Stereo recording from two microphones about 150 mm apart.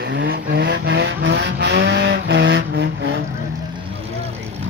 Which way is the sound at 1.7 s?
90° right.